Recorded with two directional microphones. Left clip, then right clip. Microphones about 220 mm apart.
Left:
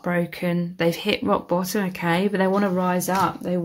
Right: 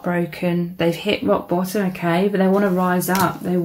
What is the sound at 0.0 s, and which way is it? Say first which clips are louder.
Speech: right 2 dB; 40° left (ahead or behind).